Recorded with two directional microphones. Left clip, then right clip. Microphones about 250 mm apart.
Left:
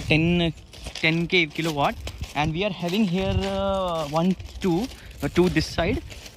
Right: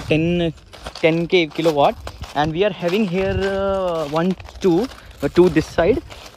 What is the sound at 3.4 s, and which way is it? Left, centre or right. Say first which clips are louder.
Speech: right 5 dB; left.